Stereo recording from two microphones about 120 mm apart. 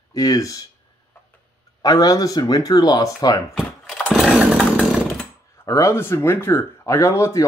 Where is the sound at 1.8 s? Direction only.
30° left (ahead or behind).